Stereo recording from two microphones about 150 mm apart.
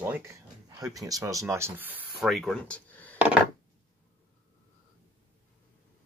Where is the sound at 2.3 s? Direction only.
5° left (ahead or behind).